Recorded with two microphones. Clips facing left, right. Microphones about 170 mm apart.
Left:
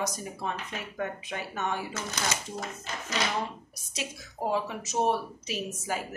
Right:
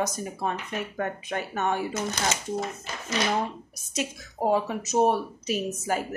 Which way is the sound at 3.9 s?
45° right (ahead or behind).